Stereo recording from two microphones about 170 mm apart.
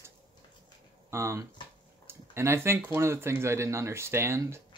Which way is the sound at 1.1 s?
15° right (ahead or behind).